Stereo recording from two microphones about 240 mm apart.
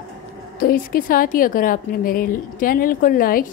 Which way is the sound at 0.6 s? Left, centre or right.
Left.